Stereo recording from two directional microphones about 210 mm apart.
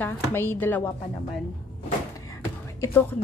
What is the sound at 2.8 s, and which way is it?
Speech, 10° left (ahead or behind).